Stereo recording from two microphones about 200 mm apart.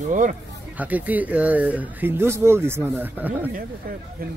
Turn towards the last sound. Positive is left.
turn(degrees=-45)  # may be behind; listen again after turning